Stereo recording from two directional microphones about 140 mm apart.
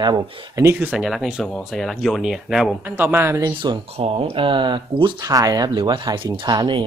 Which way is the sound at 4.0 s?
45° right (ahead or behind).